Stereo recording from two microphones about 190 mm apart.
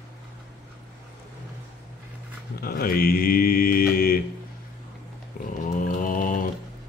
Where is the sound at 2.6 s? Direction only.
50° left (ahead or behind).